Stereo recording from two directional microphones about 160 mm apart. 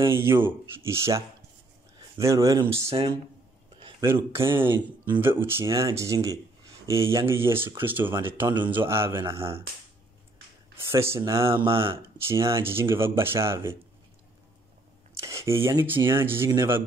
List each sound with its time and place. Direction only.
0.1 s speech: 15° right (ahead or behind)
4.0 s speech: 15° right (ahead or behind)
9.2 s speech: 35° right (ahead or behind)
10.9 s speech: 15° right (ahead or behind)
11.5 s speech: 35° right (ahead or behind)
12.3 s speech: 15° right (ahead or behind)
15.1 s speech: 20° right (ahead or behind)